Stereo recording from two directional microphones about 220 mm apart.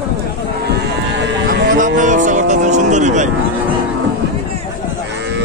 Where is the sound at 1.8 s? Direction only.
35° right (ahead or behind).